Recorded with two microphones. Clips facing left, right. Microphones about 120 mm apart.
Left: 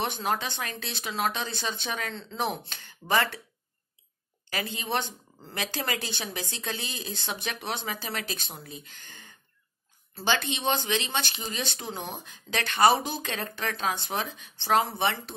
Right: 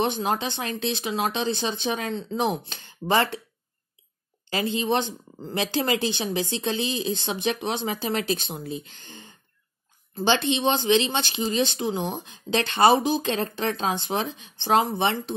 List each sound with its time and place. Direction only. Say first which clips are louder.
0.0 s speech: right 5 dB; 20° right (ahead or behind)
4.5 s speech: right 7 dB; 25° right (ahead or behind)